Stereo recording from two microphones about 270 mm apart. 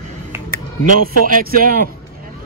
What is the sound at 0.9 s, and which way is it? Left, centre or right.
Speech, right.